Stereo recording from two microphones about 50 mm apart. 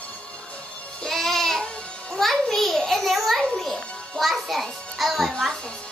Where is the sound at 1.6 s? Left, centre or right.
Left.